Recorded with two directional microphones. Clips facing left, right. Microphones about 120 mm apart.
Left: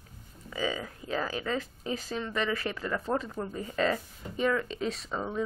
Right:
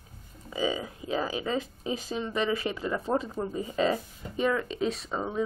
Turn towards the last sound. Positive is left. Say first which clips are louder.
# right 2 dB
turn(degrees=-15)  # may be behind; listen again after turning